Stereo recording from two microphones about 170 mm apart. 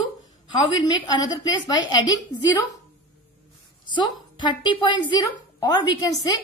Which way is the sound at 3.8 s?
25° left (ahead or behind).